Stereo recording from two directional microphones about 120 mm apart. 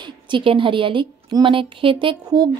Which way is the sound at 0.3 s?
45° right (ahead or behind).